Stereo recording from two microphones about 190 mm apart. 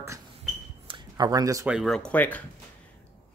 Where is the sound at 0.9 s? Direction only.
20° right (ahead or behind).